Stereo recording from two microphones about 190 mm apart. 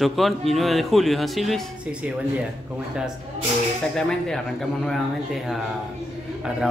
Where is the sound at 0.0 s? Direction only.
Centre (ahead or behind).